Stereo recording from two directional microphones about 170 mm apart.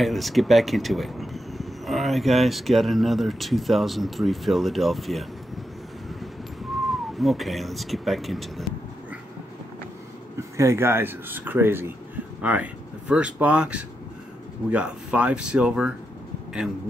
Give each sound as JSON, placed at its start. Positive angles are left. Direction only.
{"t": 0.0, "sound": "speech", "side_deg": 0}
{"t": 6.9, "sound": "speech", "side_deg": 0}
{"t": 10.6, "sound": "speech", "side_deg": -15}